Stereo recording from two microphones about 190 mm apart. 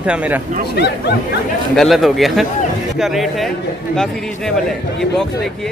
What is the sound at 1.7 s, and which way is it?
A man's voice, centre (ahead or behind).